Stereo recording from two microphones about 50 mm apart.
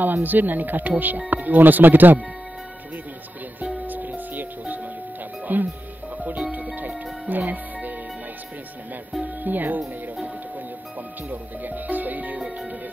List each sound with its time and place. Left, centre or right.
0.0 s speech: right
3.8 s music: right
5.5 s speech: right
6.1 s music: right
9.2 s music: right
11.2 s speech: right